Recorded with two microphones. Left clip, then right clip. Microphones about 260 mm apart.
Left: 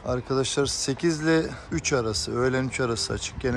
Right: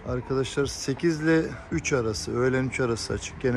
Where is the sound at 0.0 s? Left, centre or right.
Centre.